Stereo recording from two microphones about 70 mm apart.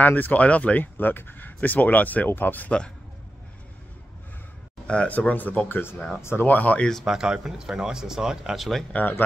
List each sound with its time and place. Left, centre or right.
0.0 s speech: left
4.8 s speech: centre
7.1 s speech: centre